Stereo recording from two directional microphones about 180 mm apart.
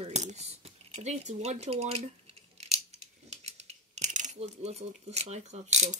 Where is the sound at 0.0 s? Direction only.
40° right (ahead or behind).